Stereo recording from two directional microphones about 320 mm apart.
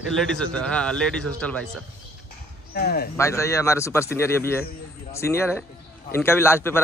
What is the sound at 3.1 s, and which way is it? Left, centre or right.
Speech, centre.